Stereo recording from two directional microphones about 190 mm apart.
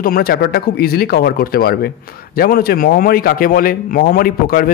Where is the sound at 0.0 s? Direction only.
50° left (ahead or behind).